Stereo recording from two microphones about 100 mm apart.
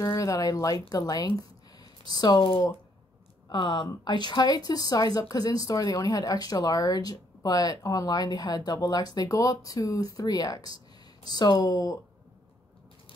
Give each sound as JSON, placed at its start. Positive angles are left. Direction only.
{"t": 0.0, "sound": "speech", "side_deg": 30}
{"t": 2.1, "sound": "speech", "side_deg": 50}
{"t": 3.4, "sound": "a woman's voice", "side_deg": 50}